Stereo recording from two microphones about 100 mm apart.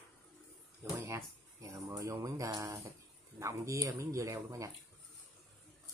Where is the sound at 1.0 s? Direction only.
30° right (ahead or behind).